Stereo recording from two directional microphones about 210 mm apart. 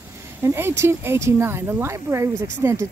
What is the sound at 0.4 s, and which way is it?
Speech, 10° right (ahead or behind).